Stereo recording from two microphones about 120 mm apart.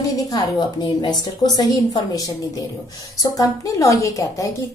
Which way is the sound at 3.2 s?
30° left (ahead or behind).